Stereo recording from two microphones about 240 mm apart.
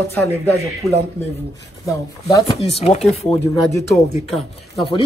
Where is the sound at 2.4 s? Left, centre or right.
Left.